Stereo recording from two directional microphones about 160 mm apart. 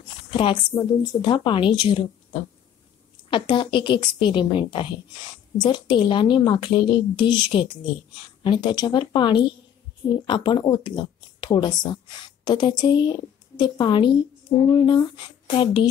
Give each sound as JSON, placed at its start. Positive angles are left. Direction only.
{"t": 0.3, "sound": "a woman's voice", "side_deg": 30}